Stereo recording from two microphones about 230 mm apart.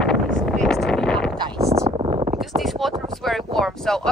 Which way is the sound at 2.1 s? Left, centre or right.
Right.